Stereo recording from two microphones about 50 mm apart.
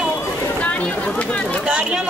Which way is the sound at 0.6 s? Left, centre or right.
Left.